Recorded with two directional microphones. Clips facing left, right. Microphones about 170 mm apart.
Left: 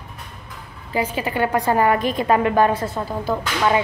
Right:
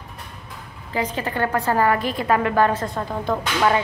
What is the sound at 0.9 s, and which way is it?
A woman's voice, 10° left (ahead or behind).